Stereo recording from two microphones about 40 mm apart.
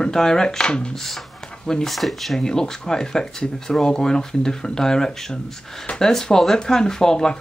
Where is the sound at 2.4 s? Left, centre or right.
Centre.